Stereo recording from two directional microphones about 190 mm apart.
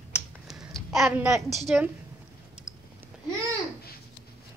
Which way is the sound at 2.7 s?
5° right (ahead or behind).